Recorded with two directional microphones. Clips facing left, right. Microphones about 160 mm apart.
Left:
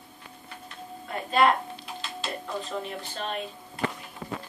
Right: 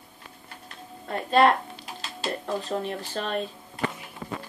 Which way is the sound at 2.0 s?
40° right (ahead or behind).